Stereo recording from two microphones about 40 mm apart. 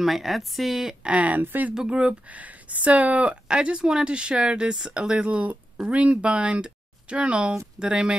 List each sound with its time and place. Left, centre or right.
0.0 s speech: centre
1.0 s speech: right
1.4 s speech: right
1.9 s speech: right
3.4 s speech: right
5.2 s speech: right